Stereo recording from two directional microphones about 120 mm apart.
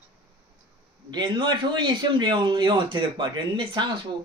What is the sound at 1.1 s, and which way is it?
A man's voice, 40° right (ahead or behind).